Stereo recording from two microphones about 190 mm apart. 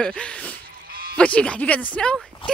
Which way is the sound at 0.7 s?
50° right (ahead or behind).